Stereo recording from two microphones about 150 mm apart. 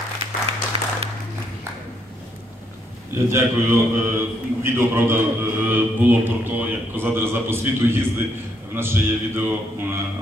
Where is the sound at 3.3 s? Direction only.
15° right (ahead or behind).